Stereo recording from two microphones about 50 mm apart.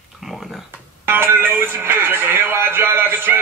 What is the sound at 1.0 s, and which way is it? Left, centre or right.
Speech, right.